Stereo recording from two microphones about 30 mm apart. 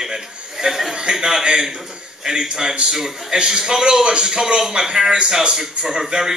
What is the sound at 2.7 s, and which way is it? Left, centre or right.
A man's voice, right.